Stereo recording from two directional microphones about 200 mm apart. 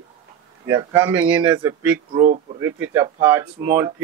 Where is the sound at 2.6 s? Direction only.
10° right (ahead or behind).